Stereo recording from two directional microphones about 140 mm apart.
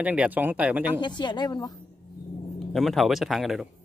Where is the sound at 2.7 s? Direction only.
Centre (ahead or behind).